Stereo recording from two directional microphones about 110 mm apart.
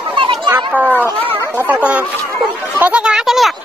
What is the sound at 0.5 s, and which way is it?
Children playing, 15° right (ahead or behind).